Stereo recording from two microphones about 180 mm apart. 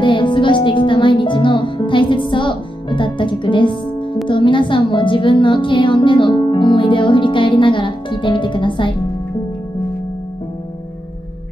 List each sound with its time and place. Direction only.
0.0 s music: 25° left (ahead or behind)
4.3 s a woman's voice: 25° left (ahead or behind)